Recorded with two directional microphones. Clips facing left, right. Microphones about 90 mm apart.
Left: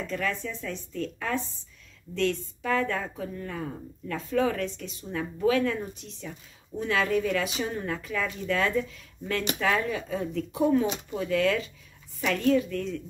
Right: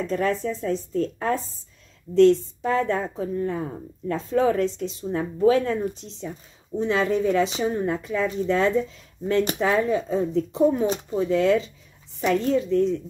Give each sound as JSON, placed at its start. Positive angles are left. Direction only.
{"t": 0.0, "sound": "a woman's voice", "side_deg": -35}